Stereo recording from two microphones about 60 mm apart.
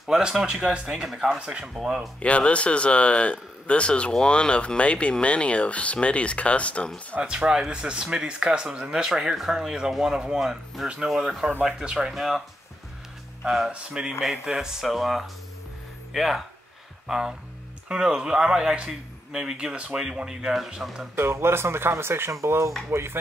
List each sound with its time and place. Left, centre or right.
0.0 s speech: centre
1.4 s speech: centre
2.2 s speech: left
7.2 s speech: centre
12.1 s speech: centre
21.2 s speech: right
22.8 s speech: right